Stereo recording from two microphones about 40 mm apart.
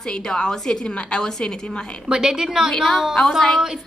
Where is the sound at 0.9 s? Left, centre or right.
Left.